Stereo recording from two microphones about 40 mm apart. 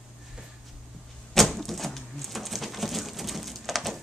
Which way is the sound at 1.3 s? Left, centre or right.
Centre.